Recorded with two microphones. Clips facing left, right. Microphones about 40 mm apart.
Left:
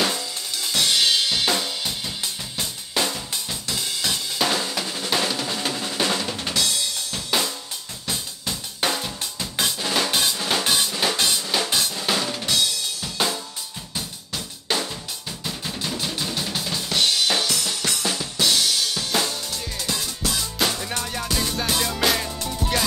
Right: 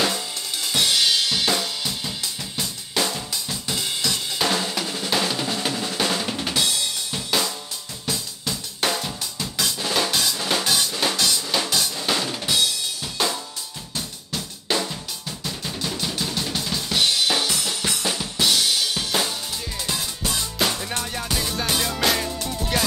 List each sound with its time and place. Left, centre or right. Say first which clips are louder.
0.2 s drum kit: even; centre
3.6 s drum kit: right 2 dB; centre
4.0 s drum kit: left 1 dB; centre
7.2 s drum kit: even; centre
11.1 s drum: even; left
11.4 s drum kit: even; centre
13.9 s drum: right 1 dB; centre
15.4 s drum kit: even; centre
20.2 s music: even; centre